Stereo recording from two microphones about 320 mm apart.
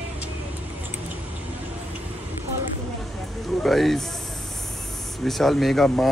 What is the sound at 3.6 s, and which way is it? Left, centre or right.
Speech, centre.